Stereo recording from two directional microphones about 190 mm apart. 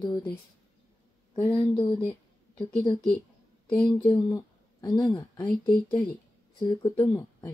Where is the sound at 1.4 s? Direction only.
25° left (ahead or behind).